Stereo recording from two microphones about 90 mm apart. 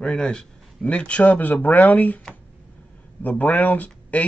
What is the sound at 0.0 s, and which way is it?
A man's voice, 10° left (ahead or behind).